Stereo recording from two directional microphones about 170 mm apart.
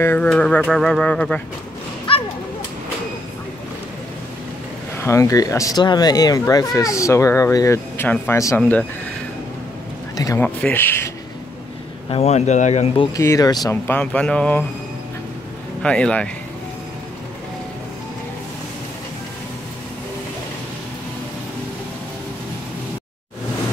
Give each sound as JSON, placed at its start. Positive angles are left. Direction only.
{"t": 0.0, "sound": "speech", "side_deg": 10}
{"t": 4.9, "sound": "speech", "side_deg": 15}
{"t": 10.1, "sound": "speech", "side_deg": 20}
{"t": 12.1, "sound": "speech", "side_deg": 40}
{"t": 13.2, "sound": "speech", "side_deg": 20}
{"t": 15.8, "sound": "speech", "side_deg": 5}